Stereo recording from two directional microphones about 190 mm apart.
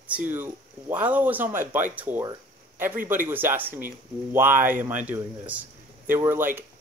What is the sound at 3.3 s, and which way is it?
Speech, 10° right (ahead or behind).